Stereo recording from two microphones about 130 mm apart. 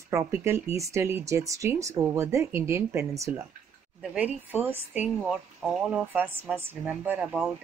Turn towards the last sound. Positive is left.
turn(degrees=-5)  # may be behind; listen again after turning